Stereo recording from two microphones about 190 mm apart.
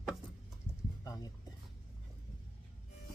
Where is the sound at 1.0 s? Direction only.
20° left (ahead or behind).